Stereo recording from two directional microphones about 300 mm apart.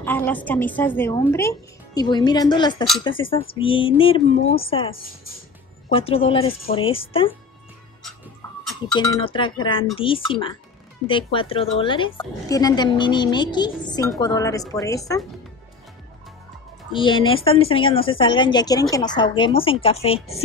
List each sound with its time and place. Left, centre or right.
0.0 s a woman's voice: centre
8.9 s a woman's voice: centre
16.9 s a woman's voice: centre